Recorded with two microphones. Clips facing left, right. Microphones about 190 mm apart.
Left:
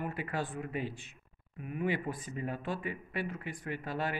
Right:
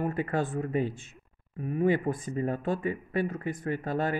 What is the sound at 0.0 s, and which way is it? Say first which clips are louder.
Speech: right 7 dB; 45° right (ahead or behind).